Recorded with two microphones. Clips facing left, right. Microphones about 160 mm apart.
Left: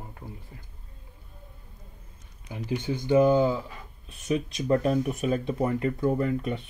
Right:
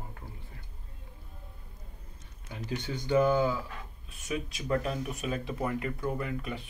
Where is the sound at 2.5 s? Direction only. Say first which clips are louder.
Left 6 dB; 15° left (ahead or behind).